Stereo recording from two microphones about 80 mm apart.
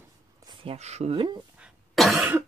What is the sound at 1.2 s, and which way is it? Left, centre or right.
Speech, right.